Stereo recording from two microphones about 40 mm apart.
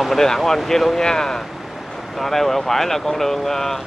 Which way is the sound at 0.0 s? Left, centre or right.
Centre.